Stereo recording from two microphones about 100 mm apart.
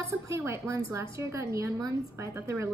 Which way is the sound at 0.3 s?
25° right (ahead or behind).